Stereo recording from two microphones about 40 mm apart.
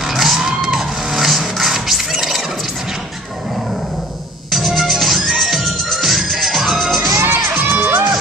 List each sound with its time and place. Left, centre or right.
0.0 s music: centre
4.5 s music: centre
7.2 s music: right